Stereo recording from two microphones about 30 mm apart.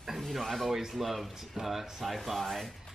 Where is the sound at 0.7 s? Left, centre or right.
Centre.